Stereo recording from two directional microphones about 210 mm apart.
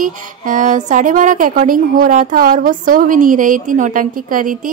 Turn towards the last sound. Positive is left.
turn(degrees=-40)  # may be behind; listen again after turning